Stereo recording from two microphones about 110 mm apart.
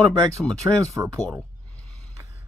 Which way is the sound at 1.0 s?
20° right (ahead or behind).